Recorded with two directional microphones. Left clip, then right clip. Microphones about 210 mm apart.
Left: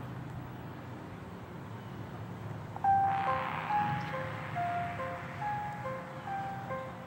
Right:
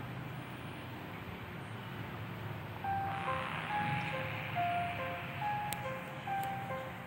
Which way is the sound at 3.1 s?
35° left (ahead or behind).